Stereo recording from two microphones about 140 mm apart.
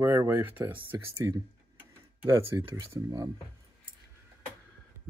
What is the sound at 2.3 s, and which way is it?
Speech, 20° right (ahead or behind).